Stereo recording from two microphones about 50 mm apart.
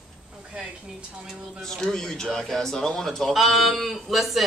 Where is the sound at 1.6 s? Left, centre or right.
Centre.